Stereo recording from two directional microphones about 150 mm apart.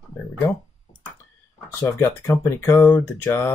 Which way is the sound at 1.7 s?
15° left (ahead or behind).